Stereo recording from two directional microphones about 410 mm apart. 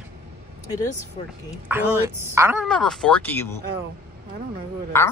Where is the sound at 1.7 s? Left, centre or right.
Centre.